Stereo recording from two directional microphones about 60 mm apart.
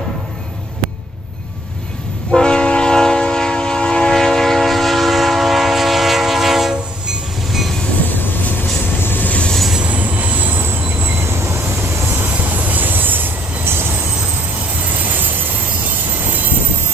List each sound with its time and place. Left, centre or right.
2.3 s train: centre
9.0 s train: left
9.8 s train wheels squealing: right
10.6 s train: right
12.4 s train: right
15.0 s vehicle: right